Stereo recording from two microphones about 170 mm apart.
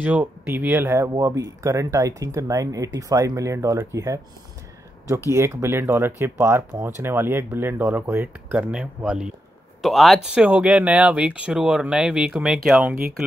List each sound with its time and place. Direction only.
0.0 s speech: 10° right (ahead or behind)